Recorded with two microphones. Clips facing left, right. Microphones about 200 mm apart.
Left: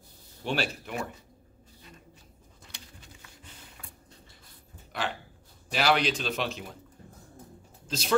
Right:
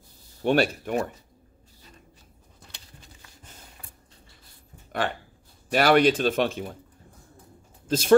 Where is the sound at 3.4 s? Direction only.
45° right (ahead or behind).